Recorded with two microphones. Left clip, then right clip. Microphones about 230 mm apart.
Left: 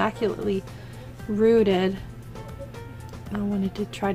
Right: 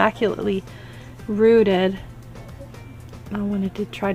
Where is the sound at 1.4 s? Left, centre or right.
Right.